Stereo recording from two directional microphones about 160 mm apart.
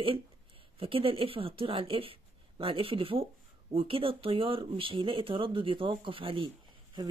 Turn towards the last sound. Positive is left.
turn(degrees=-30)  # may be behind; listen again after turning